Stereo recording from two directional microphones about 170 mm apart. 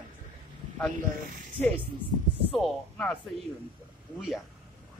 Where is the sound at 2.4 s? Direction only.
5° left (ahead or behind).